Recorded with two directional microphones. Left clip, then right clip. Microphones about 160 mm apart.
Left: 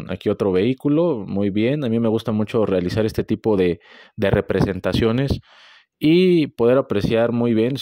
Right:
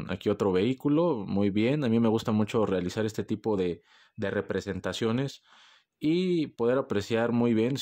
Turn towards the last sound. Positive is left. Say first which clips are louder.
# left 7 dB
turn(degrees=30)  # may be behind; listen again after turning